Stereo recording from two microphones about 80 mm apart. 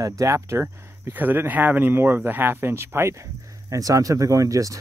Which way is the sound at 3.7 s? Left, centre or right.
Right.